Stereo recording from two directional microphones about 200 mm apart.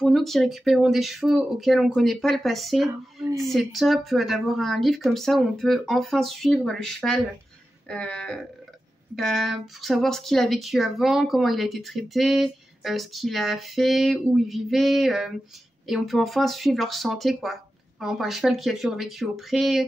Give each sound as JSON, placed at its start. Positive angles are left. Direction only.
{"t": 0.0, "sound": "speech", "side_deg": 0}
{"t": 2.9, "sound": "a sound", "side_deg": -15}
{"t": 3.4, "sound": "speech", "side_deg": 0}